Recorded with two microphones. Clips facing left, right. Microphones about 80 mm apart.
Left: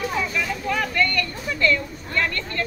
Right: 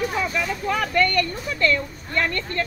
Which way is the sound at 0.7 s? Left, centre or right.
Right.